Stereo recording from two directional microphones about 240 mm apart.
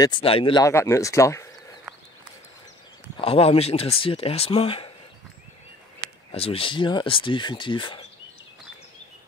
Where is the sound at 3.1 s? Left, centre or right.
Left.